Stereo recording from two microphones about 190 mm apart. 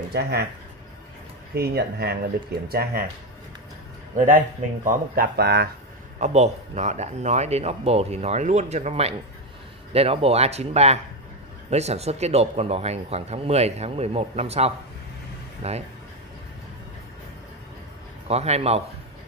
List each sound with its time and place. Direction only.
0.1 s speech: 60° right (ahead or behind)
1.5 s speech: 55° right (ahead or behind)
4.8 s speech: 50° right (ahead or behind)
6.1 s speech: 35° right (ahead or behind)
18.3 s speech: 35° right (ahead or behind)